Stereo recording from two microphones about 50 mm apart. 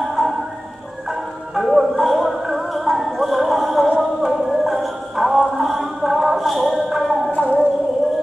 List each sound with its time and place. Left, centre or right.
0.2 s music: centre
1.5 s music: centre
7.2 s music: left